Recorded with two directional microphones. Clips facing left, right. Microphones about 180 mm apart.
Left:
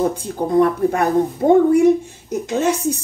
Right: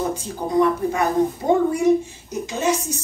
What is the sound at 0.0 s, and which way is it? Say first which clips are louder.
Speech: left 5 dB; 55° left (ahead or behind).